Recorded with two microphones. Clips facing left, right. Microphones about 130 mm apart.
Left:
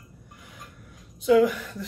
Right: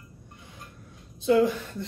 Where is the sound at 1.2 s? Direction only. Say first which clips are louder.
Left 2 dB; 25° right (ahead or behind).